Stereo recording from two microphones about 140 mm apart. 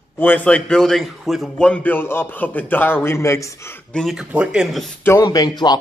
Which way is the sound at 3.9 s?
Centre (ahead or behind).